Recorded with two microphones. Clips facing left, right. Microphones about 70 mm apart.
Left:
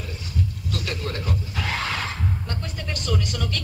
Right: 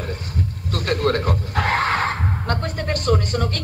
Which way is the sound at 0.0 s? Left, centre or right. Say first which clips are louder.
Right 3 dB; right.